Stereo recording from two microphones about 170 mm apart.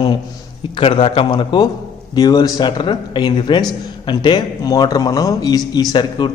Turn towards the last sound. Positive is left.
turn(degrees=25)  # may be behind; listen again after turning